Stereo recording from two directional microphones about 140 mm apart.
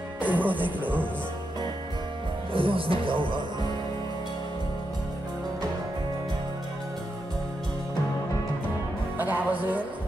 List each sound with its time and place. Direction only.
0.2 s music: 10° right (ahead or behind)
2.5 s speech: 40° right (ahead or behind)
9.2 s music: 10° right (ahead or behind)